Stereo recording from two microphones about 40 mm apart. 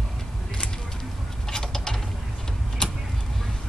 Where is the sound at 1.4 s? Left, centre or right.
Centre.